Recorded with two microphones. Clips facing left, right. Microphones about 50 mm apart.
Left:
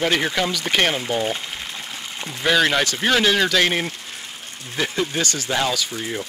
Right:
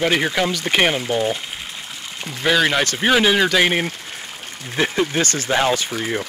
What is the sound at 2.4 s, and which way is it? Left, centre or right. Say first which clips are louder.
Speech: right 1 dB; centre.